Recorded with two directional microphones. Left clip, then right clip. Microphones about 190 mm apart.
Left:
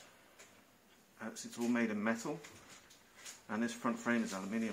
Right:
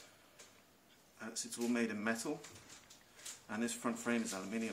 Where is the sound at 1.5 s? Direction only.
20° left (ahead or behind).